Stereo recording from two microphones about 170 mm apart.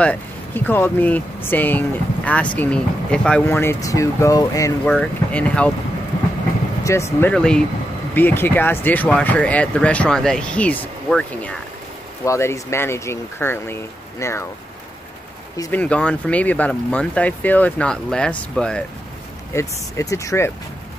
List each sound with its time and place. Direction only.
0.0 s speech: 10° left (ahead or behind)
4.9 s speech: 5° left (ahead or behind)
6.8 s speech: 15° left (ahead or behind)
15.5 s speech: 20° left (ahead or behind)
15.8 s speech: 5° left (ahead or behind)
19.5 s speech: 20° left (ahead or behind)